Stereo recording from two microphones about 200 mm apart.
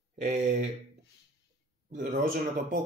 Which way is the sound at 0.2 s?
40° right (ahead or behind).